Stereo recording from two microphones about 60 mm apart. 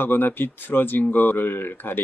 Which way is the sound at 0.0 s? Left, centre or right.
Left.